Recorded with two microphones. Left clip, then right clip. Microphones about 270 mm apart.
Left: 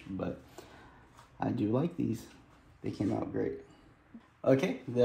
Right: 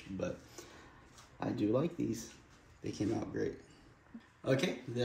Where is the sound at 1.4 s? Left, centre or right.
Left.